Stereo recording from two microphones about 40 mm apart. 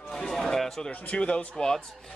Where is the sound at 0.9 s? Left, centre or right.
Left.